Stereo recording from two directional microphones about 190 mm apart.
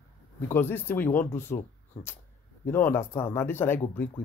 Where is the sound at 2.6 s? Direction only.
10° left (ahead or behind).